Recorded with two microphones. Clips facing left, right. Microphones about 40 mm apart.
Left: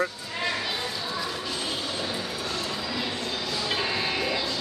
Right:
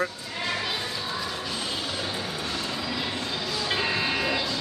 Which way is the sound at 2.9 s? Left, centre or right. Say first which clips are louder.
Even; centre.